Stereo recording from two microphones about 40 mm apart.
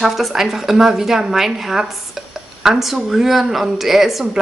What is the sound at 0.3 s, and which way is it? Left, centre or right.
A woman's voice, centre.